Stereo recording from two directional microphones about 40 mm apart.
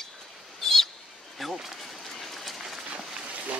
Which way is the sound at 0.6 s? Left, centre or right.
Centre.